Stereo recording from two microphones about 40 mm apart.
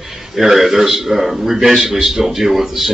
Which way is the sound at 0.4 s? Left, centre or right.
Centre.